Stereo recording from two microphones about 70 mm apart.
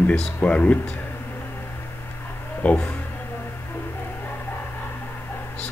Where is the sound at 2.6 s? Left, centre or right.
Left.